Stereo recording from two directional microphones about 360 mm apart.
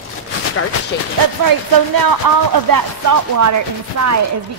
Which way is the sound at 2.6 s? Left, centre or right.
Right.